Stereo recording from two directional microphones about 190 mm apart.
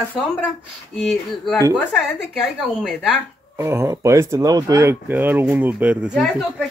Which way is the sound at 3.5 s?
15° right (ahead or behind).